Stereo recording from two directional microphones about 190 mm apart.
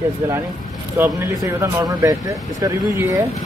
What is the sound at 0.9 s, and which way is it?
Speech, 10° right (ahead or behind).